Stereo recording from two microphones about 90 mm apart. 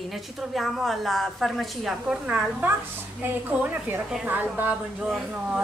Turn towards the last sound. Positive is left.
turn(degrees=-20)  # may be behind; listen again after turning